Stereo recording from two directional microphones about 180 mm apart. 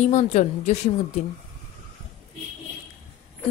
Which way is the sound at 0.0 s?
40° left (ahead or behind).